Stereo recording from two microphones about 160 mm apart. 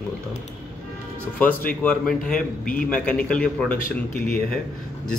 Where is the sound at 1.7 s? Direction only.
5° left (ahead or behind).